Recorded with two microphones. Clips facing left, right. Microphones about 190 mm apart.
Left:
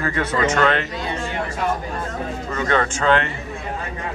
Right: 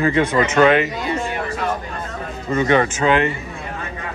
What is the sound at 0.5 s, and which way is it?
Speech, 10° right (ahead or behind).